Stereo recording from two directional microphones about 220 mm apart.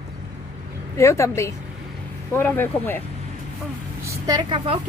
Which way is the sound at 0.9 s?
15° left (ahead or behind).